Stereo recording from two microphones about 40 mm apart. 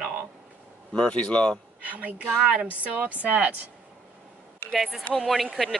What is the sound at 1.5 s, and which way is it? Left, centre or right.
Speech, right.